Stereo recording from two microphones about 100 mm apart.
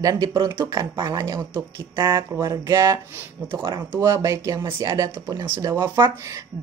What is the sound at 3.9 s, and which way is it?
A woman's voice, 25° right (ahead or behind).